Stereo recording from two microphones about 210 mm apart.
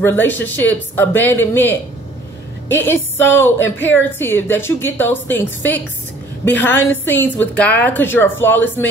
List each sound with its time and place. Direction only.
0.0 s speech: 10° left (ahead or behind)
3.5 s speech: 60° left (ahead or behind)
3.9 s speech: 10° left (ahead or behind)